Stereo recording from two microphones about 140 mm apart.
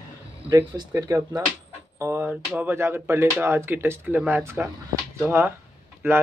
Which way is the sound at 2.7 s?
15° right (ahead or behind).